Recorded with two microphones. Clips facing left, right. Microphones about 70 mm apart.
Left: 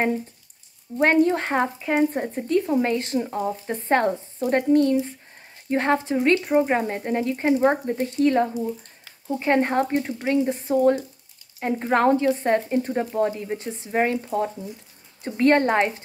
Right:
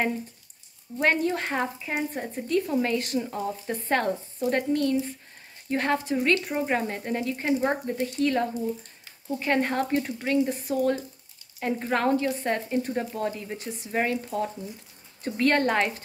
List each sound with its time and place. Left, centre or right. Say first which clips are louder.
0.9 s speech: left 6 dB; left